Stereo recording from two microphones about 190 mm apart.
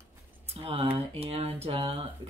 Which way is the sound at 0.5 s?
30° right (ahead or behind).